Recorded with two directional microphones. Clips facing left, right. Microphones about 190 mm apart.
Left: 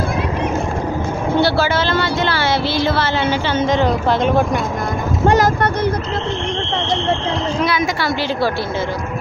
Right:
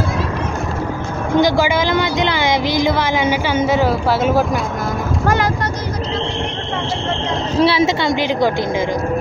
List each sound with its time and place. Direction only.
1.3 s speech: 15° right (ahead or behind)
7.5 s a woman's voice: 30° right (ahead or behind)